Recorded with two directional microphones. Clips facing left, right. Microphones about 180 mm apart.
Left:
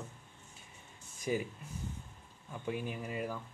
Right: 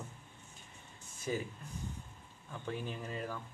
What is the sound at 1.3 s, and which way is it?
Speech, 15° left (ahead or behind).